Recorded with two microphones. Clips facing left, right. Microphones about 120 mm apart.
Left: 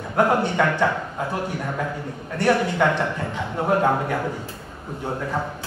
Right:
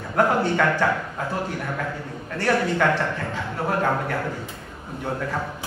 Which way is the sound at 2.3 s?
20° left (ahead or behind).